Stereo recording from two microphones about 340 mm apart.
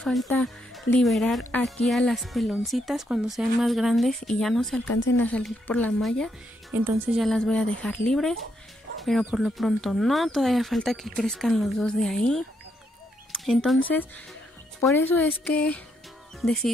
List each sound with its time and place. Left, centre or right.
0.0 s speech: centre
4.8 s speech: left
5.1 s speech: centre
13.3 s a sound: centre
14.8 s speech: centre